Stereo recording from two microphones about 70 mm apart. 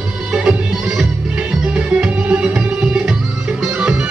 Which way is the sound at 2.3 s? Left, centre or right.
Centre.